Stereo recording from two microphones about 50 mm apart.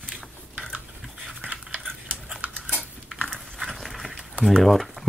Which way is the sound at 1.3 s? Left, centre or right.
Right.